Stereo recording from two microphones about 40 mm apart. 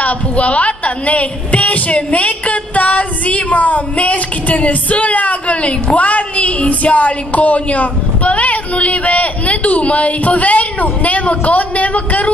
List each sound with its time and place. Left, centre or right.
0.0 s a woman's voice: left